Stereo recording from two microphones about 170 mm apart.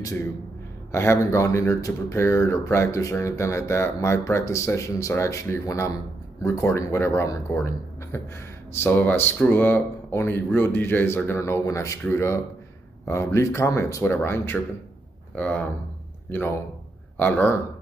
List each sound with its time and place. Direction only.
0.9 s speech: 15° left (ahead or behind)